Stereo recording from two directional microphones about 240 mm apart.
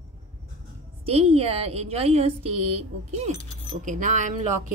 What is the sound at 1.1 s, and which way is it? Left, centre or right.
Speech, right.